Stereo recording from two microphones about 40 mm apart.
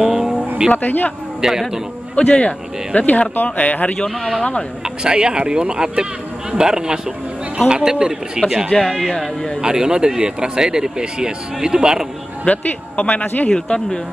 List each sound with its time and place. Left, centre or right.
0.0 s vehicle: centre
0.7 s speech: left
1.4 s a man's voice: centre
2.1 s speech: left
4.1 s speech: centre
4.8 s a man's voice: right
8.7 s speech: centre
9.6 s speech: centre
12.4 s speech: left
13.7 s speech: centre